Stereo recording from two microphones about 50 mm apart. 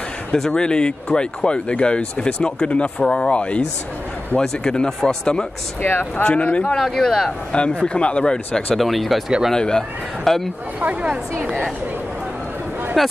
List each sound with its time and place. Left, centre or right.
0.5 s speech: centre
5.8 s speech: left
6.2 s speech: left
6.8 s speech: centre
7.8 s speech: left
8.7 s speech: centre
9.5 s speech: centre
10.8 s a woman's voice: right
13.0 s speech: centre